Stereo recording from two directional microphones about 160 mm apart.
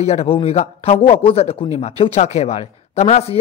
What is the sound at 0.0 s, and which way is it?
A man's voice, 40° left (ahead or behind).